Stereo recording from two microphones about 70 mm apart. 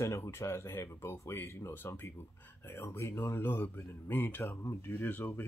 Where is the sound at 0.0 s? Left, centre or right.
Left.